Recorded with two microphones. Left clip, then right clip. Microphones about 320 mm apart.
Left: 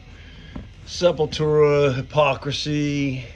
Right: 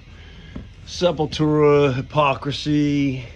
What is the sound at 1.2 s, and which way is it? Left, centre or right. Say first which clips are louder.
Speech: right 2 dB; left.